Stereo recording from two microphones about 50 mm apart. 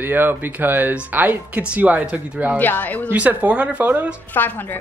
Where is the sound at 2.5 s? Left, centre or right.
Left.